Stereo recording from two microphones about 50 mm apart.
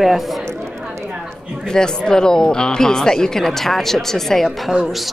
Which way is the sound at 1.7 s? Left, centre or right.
Centre.